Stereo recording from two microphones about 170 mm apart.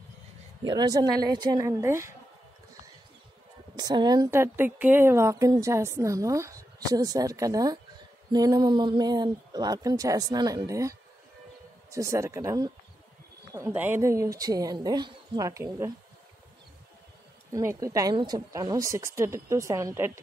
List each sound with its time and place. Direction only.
0.7 s a woman's voice: 25° right (ahead or behind)
3.7 s a woman's voice: 25° right (ahead or behind)
17.5 s a woman's voice: 20° right (ahead or behind)